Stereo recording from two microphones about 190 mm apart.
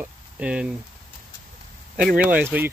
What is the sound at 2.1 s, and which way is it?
Speech, 5° right (ahead or behind).